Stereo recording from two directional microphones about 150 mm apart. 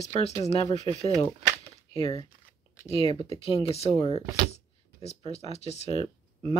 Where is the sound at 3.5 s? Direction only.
40° left (ahead or behind).